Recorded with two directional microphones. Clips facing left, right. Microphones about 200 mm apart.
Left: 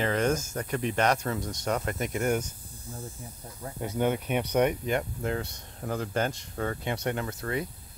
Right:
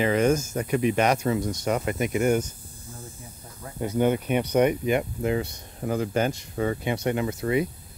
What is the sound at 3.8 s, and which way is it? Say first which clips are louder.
Speech: right 5 dB; centre (ahead or behind).